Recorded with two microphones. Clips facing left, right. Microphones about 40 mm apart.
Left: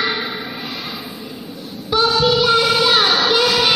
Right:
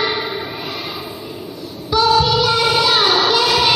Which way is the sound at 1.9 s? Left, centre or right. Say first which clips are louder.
Right 2 dB; left.